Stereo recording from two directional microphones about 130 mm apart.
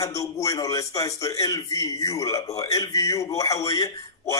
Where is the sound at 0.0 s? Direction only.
25° left (ahead or behind).